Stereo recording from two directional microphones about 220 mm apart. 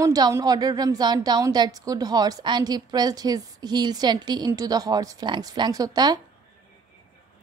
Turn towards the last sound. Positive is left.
turn(degrees=-15)  # may be behind; listen again after turning